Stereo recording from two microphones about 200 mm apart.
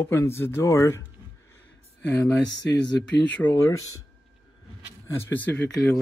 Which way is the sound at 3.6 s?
15° left (ahead or behind).